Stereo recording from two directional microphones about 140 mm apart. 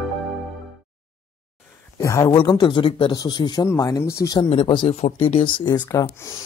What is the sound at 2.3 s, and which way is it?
Speech, 35° left (ahead or behind).